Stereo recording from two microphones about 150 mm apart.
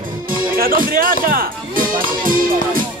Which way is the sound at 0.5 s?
75° right (ahead or behind).